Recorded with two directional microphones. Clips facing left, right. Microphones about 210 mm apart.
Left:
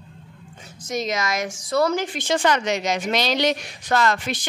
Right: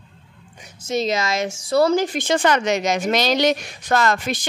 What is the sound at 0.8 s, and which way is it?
A woman's voice, 30° right (ahead or behind).